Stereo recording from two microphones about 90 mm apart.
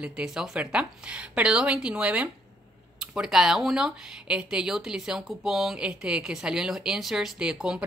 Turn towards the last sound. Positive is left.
turn(degrees=-10)  # may be behind; listen again after turning